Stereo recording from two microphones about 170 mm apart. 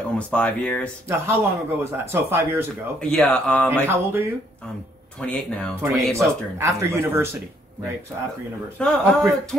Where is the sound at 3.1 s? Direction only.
5° left (ahead or behind).